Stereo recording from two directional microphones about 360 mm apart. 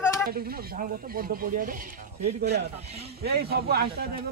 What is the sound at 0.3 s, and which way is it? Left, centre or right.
Speech, right.